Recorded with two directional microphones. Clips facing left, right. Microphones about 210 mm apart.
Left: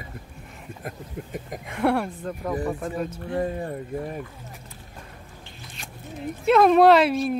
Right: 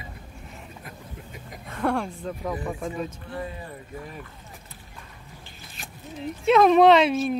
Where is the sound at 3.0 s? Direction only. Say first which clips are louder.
Left 6 dB; 50° left (ahead or behind).